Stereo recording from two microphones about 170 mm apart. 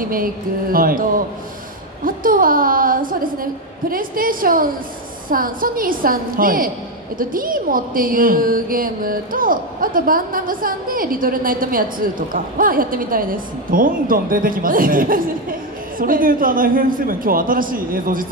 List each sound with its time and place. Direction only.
0.0 s a woman's voice: 55° right (ahead or behind)